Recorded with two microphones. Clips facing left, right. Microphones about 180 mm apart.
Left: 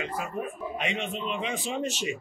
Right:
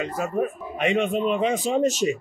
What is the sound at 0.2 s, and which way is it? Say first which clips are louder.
Speech: right 8 dB; 45° right (ahead or behind).